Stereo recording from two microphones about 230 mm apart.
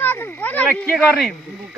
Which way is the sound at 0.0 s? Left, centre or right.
Centre.